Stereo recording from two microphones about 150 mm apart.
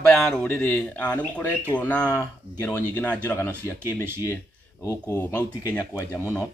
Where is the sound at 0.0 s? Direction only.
5° left (ahead or behind).